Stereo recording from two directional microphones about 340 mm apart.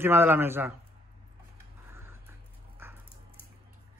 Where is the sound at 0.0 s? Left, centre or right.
Centre.